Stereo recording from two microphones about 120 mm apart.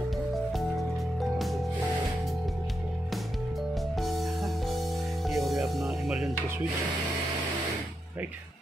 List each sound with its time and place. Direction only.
4.0 s music: centre (ahead or behind)